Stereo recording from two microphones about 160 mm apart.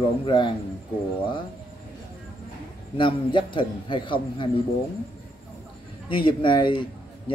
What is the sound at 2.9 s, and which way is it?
A man's voice, 30° left (ahead or behind).